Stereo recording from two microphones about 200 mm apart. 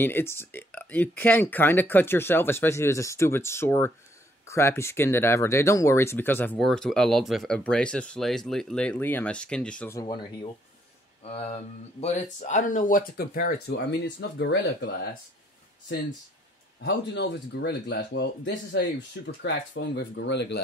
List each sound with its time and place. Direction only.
0.0 s speech: 10° left (ahead or behind)
11.2 s speech: 30° left (ahead or behind); by 15.0 s 60° left (ahead or behind)
16.8 s speech: 60° left (ahead or behind)